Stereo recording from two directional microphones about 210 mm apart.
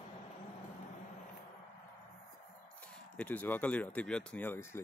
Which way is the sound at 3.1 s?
5° left (ahead or behind).